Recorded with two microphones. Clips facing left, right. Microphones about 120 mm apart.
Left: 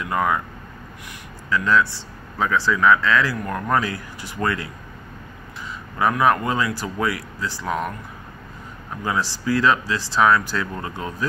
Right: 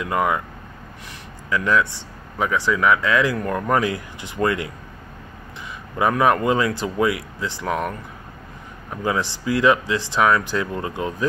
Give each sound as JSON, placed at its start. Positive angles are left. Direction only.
{"t": 0.1, "sound": "speech", "side_deg": -20}
{"t": 1.5, "sound": "speech", "side_deg": -15}
{"t": 5.9, "sound": "speech", "side_deg": -25}
{"t": 9.0, "sound": "speech", "side_deg": -20}